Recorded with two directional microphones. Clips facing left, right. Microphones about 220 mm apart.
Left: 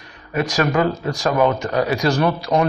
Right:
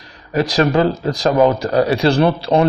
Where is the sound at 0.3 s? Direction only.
35° right (ahead or behind).